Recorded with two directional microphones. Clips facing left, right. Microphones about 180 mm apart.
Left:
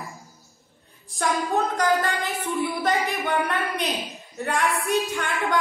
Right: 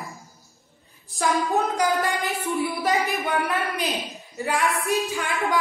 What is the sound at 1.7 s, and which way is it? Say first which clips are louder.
A woman's voice: even; 10° right (ahead or behind).